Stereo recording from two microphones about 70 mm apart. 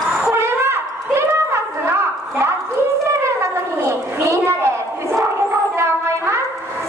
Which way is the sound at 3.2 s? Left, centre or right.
Right.